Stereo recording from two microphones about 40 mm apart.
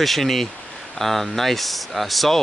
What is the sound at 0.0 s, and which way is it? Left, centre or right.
Speech, centre.